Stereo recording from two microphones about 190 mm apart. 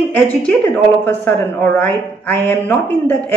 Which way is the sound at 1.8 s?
10° left (ahead or behind).